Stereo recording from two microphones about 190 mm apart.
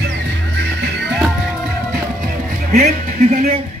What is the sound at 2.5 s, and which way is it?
A man's voice, 50° right (ahead or behind).